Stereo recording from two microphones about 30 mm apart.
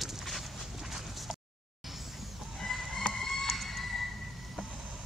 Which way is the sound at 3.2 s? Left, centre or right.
Centre.